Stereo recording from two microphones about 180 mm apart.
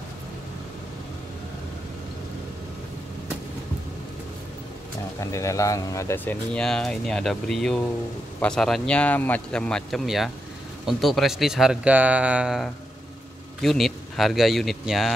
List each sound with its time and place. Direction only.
5.2 s speech: 15° left (ahead or behind); by 15.1 s centre (ahead or behind)